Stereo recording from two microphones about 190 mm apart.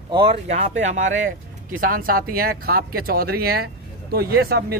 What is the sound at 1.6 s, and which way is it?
Speech, 45° right (ahead or behind).